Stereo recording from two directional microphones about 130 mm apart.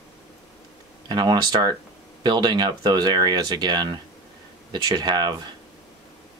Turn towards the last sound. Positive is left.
turn(degrees=-35)  # may be behind; listen again after turning